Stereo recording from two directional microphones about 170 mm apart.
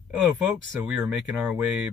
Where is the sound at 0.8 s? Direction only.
5° right (ahead or behind).